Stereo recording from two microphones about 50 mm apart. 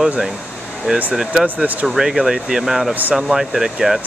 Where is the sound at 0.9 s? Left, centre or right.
Centre.